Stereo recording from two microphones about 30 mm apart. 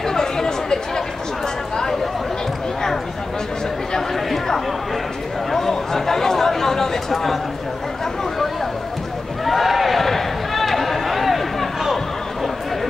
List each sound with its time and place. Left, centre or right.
0.0 s chatter: centre
5.5 s chatter: centre
9.4 s a sound: centre